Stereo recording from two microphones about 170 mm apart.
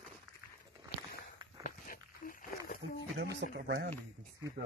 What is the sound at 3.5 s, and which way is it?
Speech, 90° right.